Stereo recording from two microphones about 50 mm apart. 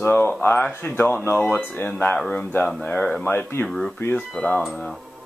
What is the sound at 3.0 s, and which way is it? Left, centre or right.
Speech, left.